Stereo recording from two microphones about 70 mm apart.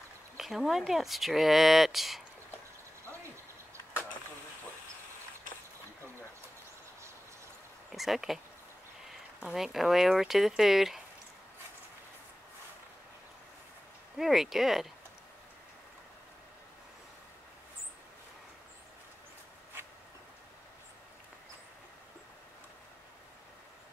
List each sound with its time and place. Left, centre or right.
0.4 s speech: centre
7.9 s speech: centre
9.4 s speech: centre
14.1 s speech: centre